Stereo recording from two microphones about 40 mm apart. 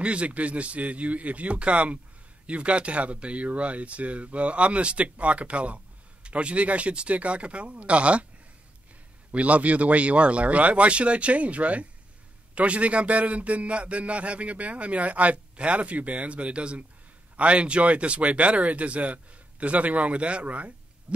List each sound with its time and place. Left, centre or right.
0.0 s a man's voice: right
9.3 s a man's voice: right